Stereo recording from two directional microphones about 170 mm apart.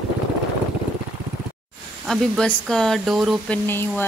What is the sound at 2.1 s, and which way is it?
Speech, 5° left (ahead or behind).